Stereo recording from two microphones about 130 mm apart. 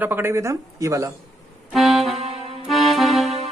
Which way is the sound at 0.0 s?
15° right (ahead or behind).